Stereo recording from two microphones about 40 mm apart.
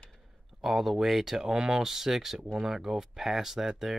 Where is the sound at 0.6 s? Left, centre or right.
Centre.